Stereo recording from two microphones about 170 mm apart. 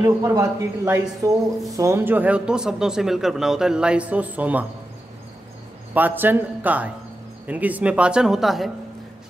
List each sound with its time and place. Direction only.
0.0 s speech: 20° right (ahead or behind)
5.9 s speech: 10° right (ahead or behind)